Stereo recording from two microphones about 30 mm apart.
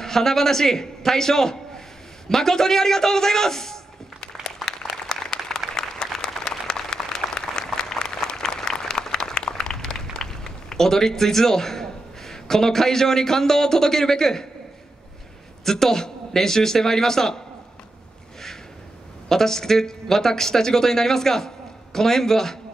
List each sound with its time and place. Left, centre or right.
0.0 s a man's voice: centre
4.6 s a sound: centre
5.8 s applause: centre
15.6 s speech: centre
19.2 s speech: centre